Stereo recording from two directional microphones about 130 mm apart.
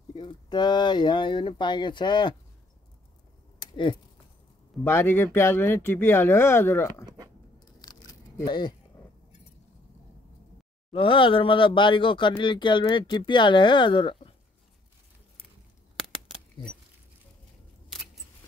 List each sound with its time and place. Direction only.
0.1 s speech: 35° left (ahead or behind)
3.5 s a sound: 40° left (ahead or behind)
4.8 s speech: 20° left (ahead or behind)
7.6 s a sound: 30° left (ahead or behind)
8.5 s speech: 35° left (ahead or behind)
10.9 s speech: 40° left (ahead or behind)